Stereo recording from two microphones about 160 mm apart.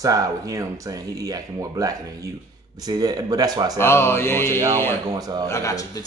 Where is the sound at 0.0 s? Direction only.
20° right (ahead or behind).